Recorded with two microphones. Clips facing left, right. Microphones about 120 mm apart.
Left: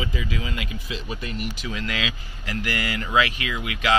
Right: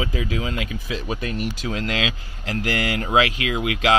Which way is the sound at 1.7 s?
60° right (ahead or behind).